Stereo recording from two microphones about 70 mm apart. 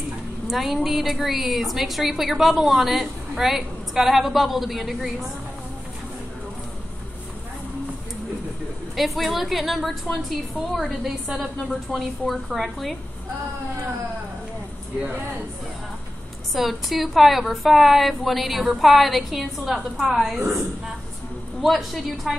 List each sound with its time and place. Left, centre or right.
0.5 s a woman's voice: centre
8.9 s a woman's voice: centre
15.0 s speech: right
16.5 s a woman's voice: centre
21.5 s a woman's voice: centre